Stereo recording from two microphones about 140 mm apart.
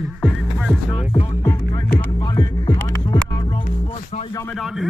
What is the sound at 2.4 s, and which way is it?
Music, 30° left (ahead or behind).